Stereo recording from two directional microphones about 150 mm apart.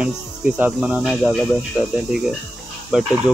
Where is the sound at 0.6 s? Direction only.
5° right (ahead or behind).